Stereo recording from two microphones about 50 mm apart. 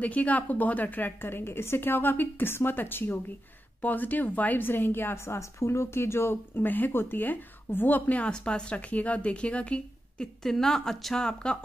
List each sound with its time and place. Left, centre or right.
0.0 s a woman's voice: left
8.3 s speech: centre